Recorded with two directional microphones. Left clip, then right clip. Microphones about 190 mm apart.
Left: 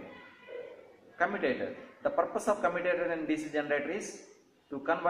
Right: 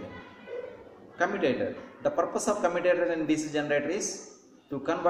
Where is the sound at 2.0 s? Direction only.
Centre (ahead or behind).